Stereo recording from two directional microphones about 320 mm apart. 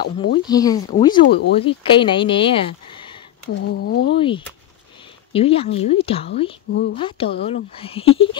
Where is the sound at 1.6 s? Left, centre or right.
Centre.